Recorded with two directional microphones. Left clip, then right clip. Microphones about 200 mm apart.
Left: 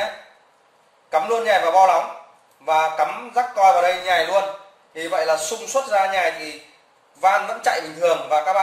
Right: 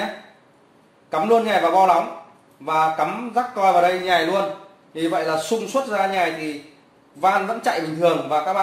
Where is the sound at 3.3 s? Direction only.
15° right (ahead or behind).